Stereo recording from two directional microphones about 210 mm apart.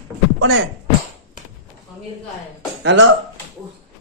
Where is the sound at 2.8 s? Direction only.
60° right (ahead or behind).